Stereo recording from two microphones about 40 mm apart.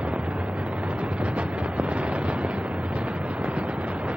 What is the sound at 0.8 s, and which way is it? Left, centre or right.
Eruption, right.